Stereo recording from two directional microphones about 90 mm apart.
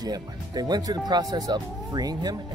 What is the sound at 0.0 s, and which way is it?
Speech, 45° right (ahead or behind).